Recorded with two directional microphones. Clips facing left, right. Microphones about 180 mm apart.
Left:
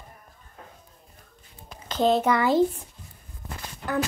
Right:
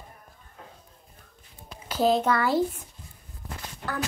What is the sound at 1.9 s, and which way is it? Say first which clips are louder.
Speech: left 1 dB; 5° right (ahead or behind).